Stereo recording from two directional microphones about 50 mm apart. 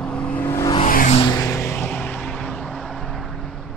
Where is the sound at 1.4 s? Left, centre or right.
Left.